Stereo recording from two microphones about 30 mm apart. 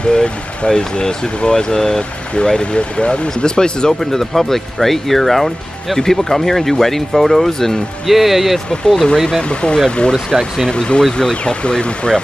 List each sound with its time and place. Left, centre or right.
0.1 s speech: left
3.0 s speech: left
3.4 s speech: left
4.0 s speech: centre
8.1 s speech: centre
8.8 s speech: centre
9.5 s speech: left